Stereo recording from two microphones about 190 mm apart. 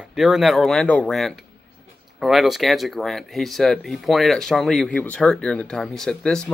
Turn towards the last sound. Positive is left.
turn(degrees=5)  # may be behind; listen again after turning